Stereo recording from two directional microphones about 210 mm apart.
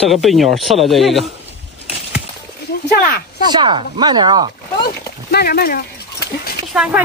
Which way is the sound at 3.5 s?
20° right (ahead or behind).